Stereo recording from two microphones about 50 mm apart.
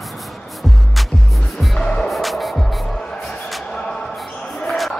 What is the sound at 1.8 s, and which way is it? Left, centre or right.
Music, centre.